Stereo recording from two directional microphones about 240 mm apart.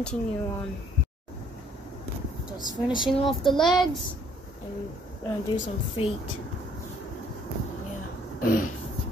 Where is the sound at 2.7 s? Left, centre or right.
Centre.